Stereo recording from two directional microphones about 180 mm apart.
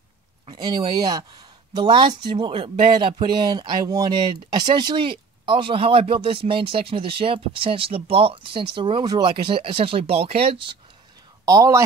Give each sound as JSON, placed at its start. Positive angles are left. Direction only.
{"t": 0.5, "sound": "speech", "side_deg": -25}
{"t": 11.4, "sound": "speech", "side_deg": -20}